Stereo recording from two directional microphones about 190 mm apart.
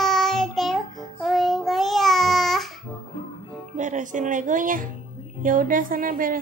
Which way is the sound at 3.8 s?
40° right (ahead or behind).